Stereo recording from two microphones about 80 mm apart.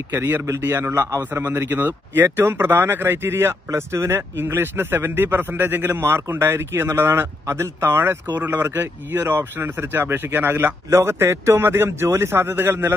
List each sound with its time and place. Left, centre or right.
0.1 s a man's voice: right